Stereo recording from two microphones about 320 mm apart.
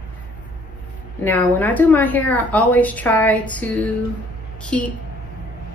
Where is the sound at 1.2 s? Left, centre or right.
Centre.